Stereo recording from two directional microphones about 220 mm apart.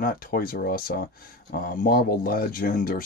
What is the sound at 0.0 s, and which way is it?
Speech, 40° left (ahead or behind).